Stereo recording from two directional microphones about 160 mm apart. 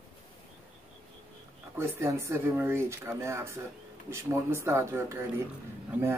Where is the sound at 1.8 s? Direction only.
15° right (ahead or behind).